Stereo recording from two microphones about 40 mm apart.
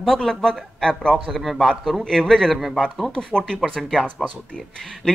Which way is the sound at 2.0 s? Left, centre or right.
Centre.